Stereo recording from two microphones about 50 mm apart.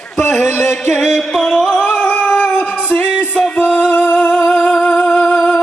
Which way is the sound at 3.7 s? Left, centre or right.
Left.